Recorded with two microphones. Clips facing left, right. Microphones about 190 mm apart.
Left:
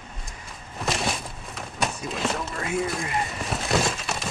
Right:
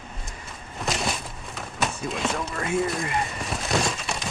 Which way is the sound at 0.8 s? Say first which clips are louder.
Left 1 dB; centre (ahead or behind).